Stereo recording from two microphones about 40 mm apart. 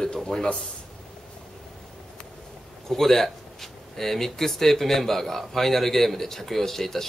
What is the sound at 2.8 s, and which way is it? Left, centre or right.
Speech, centre.